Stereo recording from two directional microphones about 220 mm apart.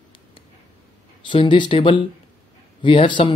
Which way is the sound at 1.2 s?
20° left (ahead or behind).